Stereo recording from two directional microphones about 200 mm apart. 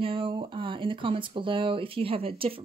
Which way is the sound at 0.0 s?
25° right (ahead or behind).